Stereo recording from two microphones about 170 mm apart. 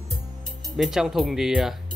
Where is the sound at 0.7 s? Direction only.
Centre (ahead or behind).